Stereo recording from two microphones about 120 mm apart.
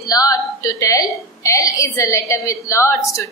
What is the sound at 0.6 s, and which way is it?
A woman's voice, 30° left (ahead or behind).